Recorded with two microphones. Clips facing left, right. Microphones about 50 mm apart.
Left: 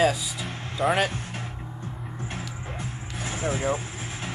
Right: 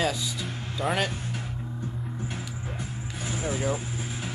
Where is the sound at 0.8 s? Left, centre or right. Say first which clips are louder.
Left 4 dB; centre.